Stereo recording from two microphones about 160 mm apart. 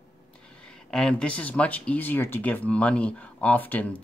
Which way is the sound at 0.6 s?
5° left (ahead or behind).